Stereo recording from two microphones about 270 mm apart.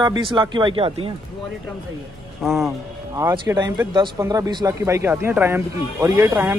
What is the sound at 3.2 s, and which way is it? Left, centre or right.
Speech, centre.